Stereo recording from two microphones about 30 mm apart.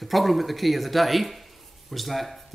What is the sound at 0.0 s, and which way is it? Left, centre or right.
A man's voice, centre.